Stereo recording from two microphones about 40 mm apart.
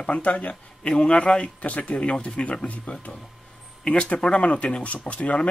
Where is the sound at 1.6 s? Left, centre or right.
Left.